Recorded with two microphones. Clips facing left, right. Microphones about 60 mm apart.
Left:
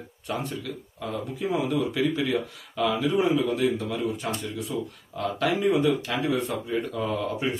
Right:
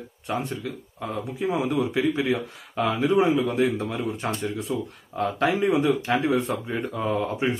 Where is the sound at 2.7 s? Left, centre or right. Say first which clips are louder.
Right 2 dB; right.